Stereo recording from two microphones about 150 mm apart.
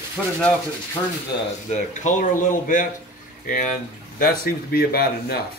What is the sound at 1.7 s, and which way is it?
Speech, 55° left (ahead or behind).